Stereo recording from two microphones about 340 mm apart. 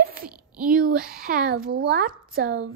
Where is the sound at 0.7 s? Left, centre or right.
Right.